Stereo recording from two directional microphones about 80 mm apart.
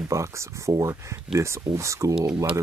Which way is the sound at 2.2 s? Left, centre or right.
Right.